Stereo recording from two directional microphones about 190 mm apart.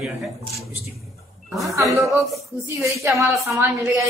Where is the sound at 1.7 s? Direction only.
15° right (ahead or behind).